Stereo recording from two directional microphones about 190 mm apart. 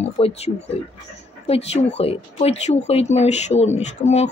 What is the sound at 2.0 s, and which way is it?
Speech, 30° left (ahead or behind).